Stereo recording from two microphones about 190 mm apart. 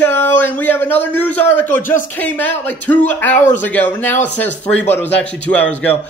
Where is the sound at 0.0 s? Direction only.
10° left (ahead or behind).